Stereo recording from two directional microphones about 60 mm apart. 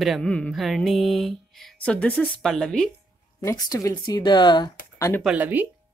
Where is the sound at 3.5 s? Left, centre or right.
Left.